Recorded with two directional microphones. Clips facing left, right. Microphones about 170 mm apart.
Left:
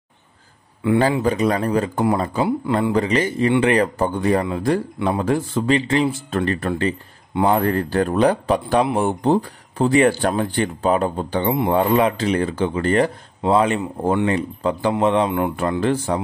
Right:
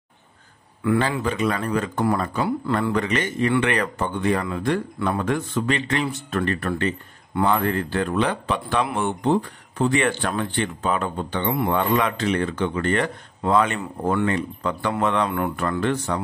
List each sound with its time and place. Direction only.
1.2 s speech: 35° left (ahead or behind)
4.9 s speech: 20° left (ahead or behind)
5.2 s speech: 30° left (ahead or behind)
15.8 s speech: 30° left (ahead or behind)